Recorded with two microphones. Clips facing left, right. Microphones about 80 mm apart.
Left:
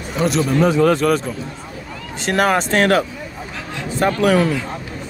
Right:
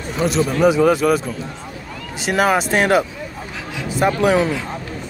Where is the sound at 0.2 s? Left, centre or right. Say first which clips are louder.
Left 1 dB; centre.